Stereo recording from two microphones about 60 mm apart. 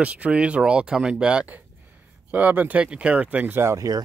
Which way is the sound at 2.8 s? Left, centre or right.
Centre.